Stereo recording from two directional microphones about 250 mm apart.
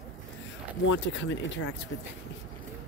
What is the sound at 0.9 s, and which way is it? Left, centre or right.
Speech, left.